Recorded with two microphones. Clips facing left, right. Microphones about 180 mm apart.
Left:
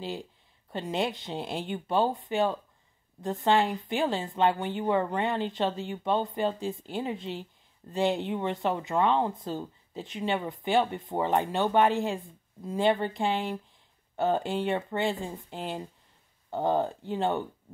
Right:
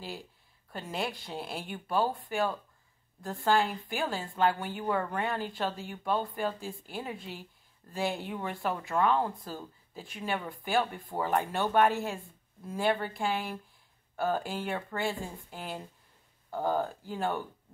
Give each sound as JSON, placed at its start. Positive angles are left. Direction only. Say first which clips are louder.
{"t": 0.7, "sound": "speech", "louder": "left 5 dB", "side_deg": 20}